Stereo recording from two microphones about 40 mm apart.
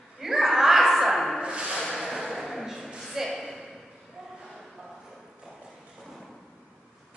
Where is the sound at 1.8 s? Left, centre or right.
Centre.